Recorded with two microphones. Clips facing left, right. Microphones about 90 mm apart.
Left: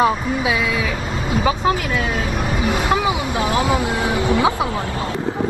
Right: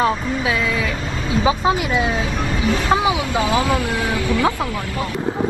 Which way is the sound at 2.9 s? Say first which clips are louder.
Right 2 dB; 20° right (ahead or behind).